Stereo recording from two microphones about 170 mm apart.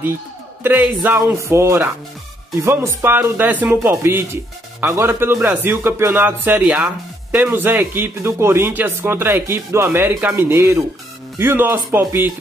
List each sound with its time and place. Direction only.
0.7 s speech: 10° right (ahead or behind)